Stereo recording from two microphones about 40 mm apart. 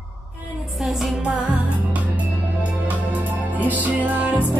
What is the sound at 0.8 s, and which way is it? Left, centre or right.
Music, centre.